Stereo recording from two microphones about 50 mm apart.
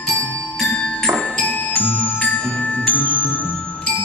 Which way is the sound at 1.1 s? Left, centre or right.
Left.